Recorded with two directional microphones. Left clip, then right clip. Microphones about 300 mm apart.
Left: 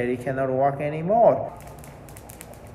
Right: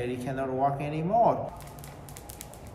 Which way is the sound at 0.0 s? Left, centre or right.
Centre.